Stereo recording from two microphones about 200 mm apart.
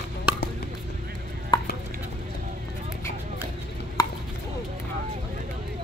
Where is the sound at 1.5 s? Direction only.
25° left (ahead or behind).